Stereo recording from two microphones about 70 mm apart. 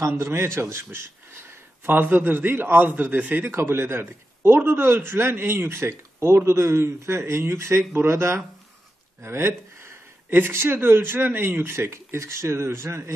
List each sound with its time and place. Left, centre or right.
0.2 s a man's voice: right
1.9 s a man's voice: right
3.5 s a man's voice: right